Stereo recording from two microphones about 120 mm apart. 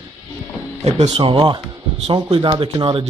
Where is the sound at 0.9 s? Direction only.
65° right (ahead or behind).